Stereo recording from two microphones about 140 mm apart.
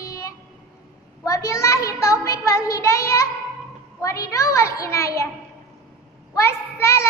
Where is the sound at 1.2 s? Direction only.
20° left (ahead or behind).